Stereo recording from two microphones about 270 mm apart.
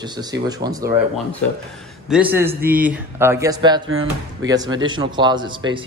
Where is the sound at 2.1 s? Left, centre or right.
Centre.